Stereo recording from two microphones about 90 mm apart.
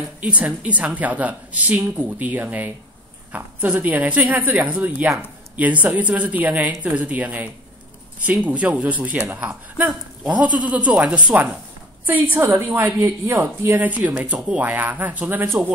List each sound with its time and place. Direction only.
0.2 s a woman's voice: 15° right (ahead or behind)